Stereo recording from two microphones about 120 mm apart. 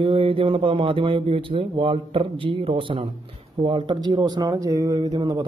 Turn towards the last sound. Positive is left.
turn(degrees=-35)  # may be behind; listen again after turning